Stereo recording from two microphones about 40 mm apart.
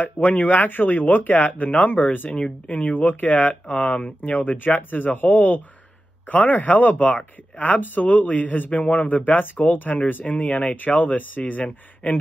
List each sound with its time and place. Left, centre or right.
0.0 s a man's voice: left
3.7 s speech: left
4.4 s a man's voice: left